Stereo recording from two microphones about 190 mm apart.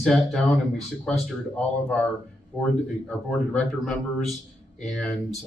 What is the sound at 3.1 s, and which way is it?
Speech, 5° left (ahead or behind).